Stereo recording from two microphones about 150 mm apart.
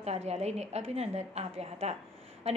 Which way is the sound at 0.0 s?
45° right (ahead or behind).